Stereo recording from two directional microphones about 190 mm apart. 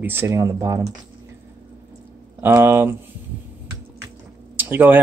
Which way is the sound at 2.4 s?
10° right (ahead or behind).